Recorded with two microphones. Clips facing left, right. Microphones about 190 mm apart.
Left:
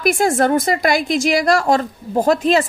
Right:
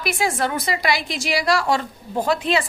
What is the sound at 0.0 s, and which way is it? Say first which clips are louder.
A woman's voice: left 7 dB; 45° left (ahead or behind).